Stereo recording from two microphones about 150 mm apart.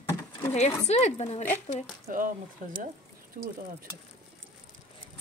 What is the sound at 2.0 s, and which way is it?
Speech, 65° right (ahead or behind).